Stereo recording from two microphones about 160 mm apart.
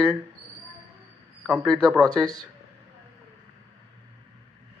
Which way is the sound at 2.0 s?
25° right (ahead or behind).